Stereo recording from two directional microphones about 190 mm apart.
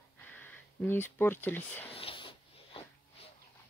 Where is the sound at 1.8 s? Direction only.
30° left (ahead or behind).